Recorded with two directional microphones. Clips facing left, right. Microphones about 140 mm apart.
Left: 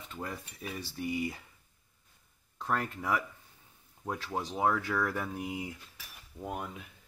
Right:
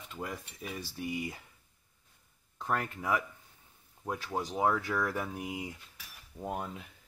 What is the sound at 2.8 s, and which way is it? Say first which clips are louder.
Speech: even; centre (ahead or behind).